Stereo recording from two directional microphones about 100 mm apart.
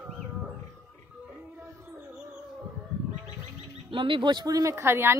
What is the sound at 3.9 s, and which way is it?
Speech, 55° right (ahead or behind).